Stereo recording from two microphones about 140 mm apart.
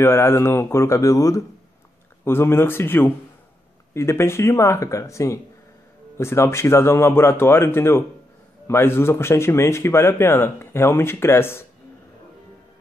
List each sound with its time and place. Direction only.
0.0 s speech: 15° left (ahead or behind)